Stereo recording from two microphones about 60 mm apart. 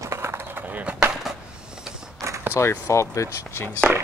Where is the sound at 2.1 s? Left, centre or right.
Right.